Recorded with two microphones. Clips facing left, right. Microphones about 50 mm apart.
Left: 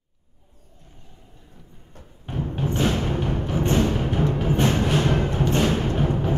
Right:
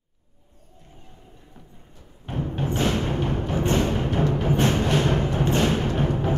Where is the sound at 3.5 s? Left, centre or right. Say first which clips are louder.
Left 1 dB; centre.